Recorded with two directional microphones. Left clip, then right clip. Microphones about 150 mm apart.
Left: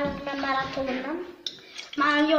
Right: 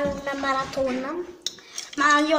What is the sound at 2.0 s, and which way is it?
Speech, 30° right (ahead or behind).